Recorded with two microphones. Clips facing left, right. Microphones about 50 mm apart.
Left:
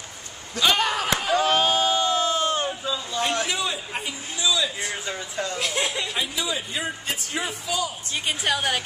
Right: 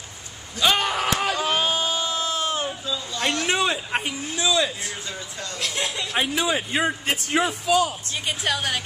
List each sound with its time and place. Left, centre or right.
0.6 s a woman's voice: centre
0.9 s a sound: right
1.4 s a sound: centre
3.4 s a man's voice: right
5.0 s speech: left
5.6 s speech: centre
6.1 s a man's voice: right
8.3 s a woman's voice: centre